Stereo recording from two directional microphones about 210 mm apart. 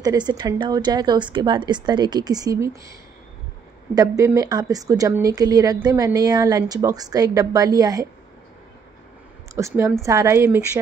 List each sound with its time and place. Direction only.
0.0 s a woman's voice: 15° right (ahead or behind)
3.9 s a woman's voice: 15° right (ahead or behind)
9.6 s a woman's voice: 15° right (ahead or behind)